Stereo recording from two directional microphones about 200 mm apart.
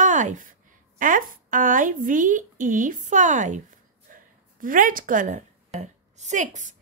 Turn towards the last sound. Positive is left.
turn(degrees=-40)  # may be behind; listen again after turning